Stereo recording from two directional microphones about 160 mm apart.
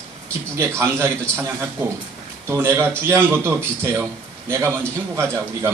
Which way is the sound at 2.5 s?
15° right (ahead or behind).